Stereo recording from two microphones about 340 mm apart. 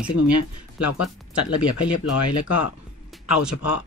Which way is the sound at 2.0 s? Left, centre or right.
Left.